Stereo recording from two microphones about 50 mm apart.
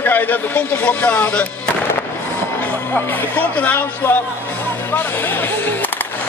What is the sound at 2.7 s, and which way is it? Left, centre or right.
Speech, left.